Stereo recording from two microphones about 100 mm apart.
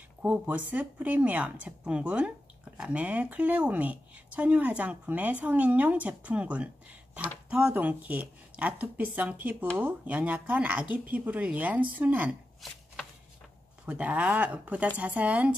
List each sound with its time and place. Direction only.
0.2 s a woman's voice: 15° right (ahead or behind)
12.6 s chopping: centre (ahead or behind)
13.8 s a woman's voice: 15° right (ahead or behind)